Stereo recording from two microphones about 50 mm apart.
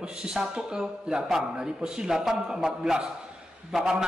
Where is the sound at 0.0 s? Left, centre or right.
Centre.